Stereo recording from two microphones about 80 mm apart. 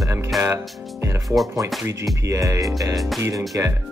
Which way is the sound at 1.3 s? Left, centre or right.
Right.